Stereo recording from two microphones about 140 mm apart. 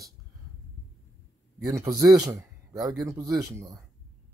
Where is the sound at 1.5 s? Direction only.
25° right (ahead or behind).